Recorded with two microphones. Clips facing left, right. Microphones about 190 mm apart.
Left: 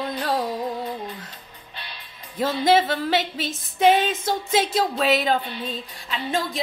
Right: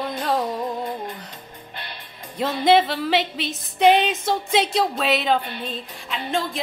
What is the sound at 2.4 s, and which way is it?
Speech, centre (ahead or behind).